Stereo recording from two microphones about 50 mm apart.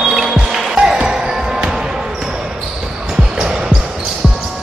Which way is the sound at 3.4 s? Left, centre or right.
Centre.